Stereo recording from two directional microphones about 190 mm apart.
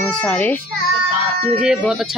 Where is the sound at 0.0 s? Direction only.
5° left (ahead or behind).